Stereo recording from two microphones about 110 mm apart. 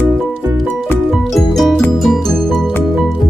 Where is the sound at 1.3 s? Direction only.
Centre (ahead or behind).